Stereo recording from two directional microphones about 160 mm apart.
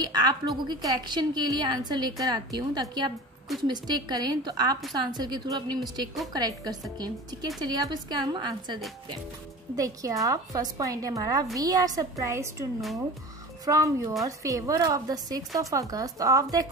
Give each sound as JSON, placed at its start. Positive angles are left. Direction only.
{"t": 0.0, "sound": "a woman's voice", "side_deg": -25}
{"t": 9.8, "sound": "a woman's voice", "side_deg": -20}
{"t": 13.7, "sound": "a woman's voice", "side_deg": -20}